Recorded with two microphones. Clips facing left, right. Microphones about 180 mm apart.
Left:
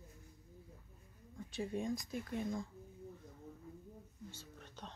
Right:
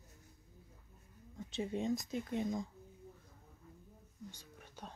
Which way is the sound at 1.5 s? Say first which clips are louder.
Right 3 dB; 20° right (ahead or behind).